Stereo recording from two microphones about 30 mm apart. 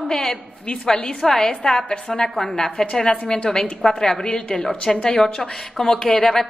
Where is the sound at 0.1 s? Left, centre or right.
Centre.